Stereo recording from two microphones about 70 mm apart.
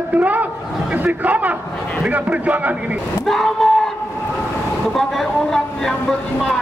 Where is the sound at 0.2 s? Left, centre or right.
Right.